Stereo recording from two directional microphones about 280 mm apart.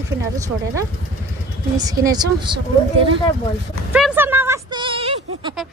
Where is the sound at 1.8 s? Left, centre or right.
Centre.